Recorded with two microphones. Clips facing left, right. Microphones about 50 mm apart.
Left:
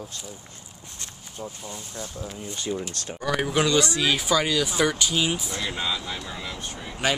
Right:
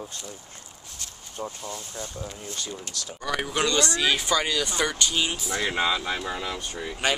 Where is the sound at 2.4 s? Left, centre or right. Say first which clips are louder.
Left 3 dB; centre.